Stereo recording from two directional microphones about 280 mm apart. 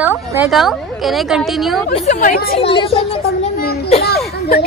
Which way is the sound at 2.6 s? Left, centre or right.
Centre.